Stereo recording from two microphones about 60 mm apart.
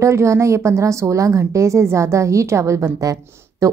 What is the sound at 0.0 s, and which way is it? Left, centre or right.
A woman's voice, right.